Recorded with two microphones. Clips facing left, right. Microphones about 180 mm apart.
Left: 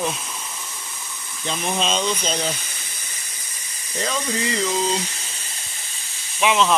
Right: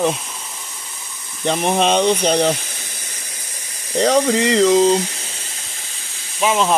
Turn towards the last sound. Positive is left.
turn(degrees=-40)  # may be behind; listen again after turning